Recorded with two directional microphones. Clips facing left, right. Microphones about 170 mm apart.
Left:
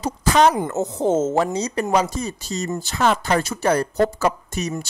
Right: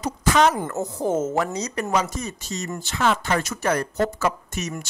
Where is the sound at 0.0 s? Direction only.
35° left (ahead or behind).